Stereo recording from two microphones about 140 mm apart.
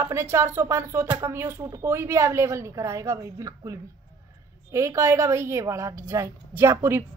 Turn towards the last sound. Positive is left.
turn(degrees=-15)  # may be behind; listen again after turning